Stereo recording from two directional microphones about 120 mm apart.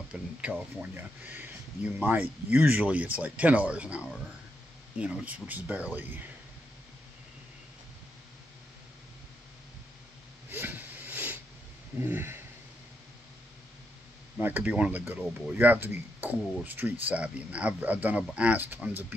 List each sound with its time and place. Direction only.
0.1 s speech: 10° right (ahead or behind)
10.5 s hiss: 15° right (ahead or behind)
12.0 s a sound: 20° right (ahead or behind)
14.4 s speech: 10° right (ahead or behind)